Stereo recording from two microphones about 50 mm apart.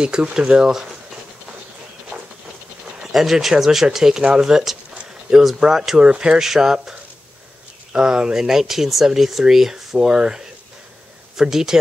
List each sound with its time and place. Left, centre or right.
0.0 s speech: centre
3.0 s speech: centre